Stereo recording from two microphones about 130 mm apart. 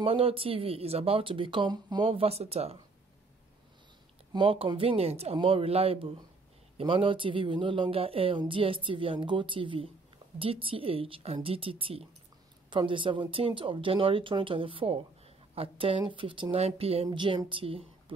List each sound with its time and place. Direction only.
0.0 s a woman's voice: 45° right (ahead or behind)
4.3 s a woman's voice: 45° right (ahead or behind)
16.5 s a woman's voice: 50° right (ahead or behind)